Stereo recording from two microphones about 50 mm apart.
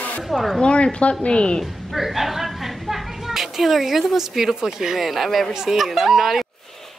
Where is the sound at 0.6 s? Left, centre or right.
Left.